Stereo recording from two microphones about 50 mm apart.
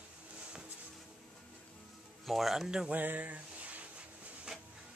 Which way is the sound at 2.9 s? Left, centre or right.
Right.